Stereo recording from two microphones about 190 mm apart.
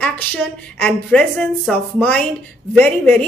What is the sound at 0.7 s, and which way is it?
A woman's voice, 5° left (ahead or behind).